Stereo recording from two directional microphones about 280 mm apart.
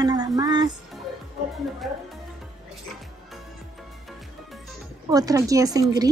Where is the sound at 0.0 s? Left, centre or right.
Centre.